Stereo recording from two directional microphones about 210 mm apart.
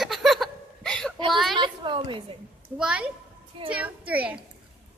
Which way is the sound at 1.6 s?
25° right (ahead or behind).